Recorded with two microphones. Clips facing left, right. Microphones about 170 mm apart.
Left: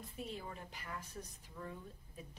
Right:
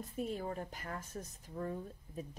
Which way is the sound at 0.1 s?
45° right (ahead or behind).